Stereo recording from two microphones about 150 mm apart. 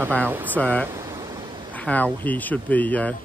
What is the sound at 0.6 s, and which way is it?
Speech, 10° left (ahead or behind).